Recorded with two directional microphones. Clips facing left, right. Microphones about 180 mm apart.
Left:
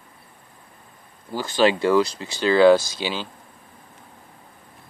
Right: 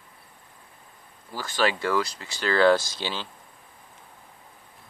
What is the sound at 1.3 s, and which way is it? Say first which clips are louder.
Speech: left 6 dB; 20° left (ahead or behind).